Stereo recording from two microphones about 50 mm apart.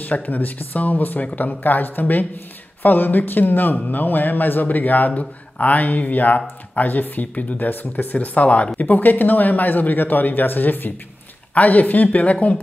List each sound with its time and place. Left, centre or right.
0.0 s speech: left